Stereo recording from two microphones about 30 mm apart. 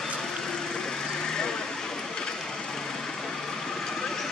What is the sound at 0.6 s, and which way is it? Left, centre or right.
Vehicle, left.